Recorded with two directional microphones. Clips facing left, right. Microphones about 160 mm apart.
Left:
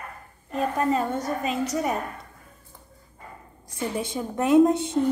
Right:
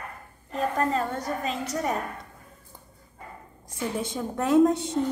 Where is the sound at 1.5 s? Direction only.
10° left (ahead or behind).